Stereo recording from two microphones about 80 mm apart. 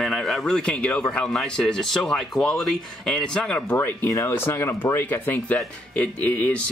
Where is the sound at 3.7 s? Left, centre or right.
Left.